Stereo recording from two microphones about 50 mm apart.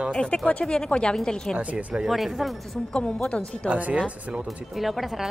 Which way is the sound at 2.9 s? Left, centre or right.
Left.